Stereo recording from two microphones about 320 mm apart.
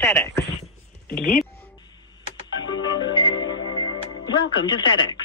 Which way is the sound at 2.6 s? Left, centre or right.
Centre.